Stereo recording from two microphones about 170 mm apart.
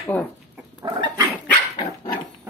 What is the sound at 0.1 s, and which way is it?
Speech, 10° left (ahead or behind).